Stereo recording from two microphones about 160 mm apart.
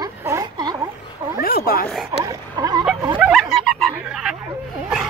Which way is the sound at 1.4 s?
70° left (ahead or behind).